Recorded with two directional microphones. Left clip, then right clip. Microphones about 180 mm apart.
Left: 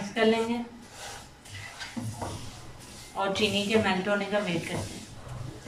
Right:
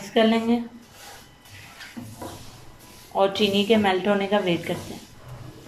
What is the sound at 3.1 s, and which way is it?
Speech, 50° right (ahead or behind).